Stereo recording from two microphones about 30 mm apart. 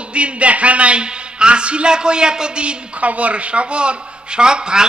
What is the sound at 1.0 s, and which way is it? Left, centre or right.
A man's voice, right.